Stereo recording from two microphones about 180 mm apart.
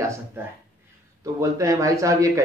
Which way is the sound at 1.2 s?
20° right (ahead or behind).